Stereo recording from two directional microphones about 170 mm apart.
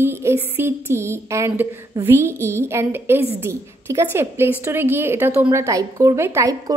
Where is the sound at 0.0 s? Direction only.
15° right (ahead or behind).